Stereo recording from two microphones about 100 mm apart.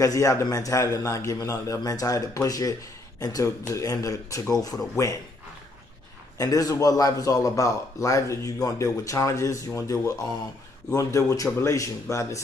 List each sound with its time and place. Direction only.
0.0 s a man's voice: 35° left (ahead or behind)
6.3 s a man's voice: 35° left (ahead or behind)